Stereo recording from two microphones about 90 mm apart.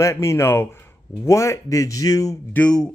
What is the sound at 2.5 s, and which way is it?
Speech, 15° left (ahead or behind).